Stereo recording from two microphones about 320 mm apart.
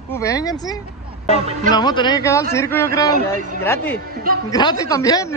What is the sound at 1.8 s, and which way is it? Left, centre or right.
Speech, centre.